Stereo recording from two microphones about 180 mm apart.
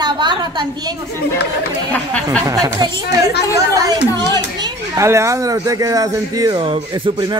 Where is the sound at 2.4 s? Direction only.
20° right (ahead or behind).